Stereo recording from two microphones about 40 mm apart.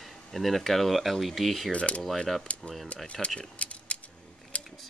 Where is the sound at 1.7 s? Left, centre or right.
Left.